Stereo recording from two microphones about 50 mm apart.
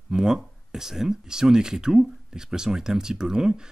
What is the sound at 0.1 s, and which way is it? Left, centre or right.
Speech, centre.